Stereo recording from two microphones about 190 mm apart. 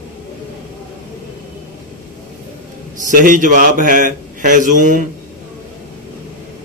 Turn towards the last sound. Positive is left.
turn(degrees=-45)  # may be behind; listen again after turning